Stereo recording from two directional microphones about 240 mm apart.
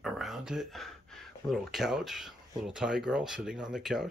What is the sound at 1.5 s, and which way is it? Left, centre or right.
Speech, centre.